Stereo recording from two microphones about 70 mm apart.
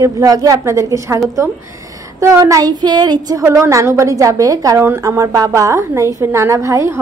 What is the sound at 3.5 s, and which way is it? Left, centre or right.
A woman's voice, right.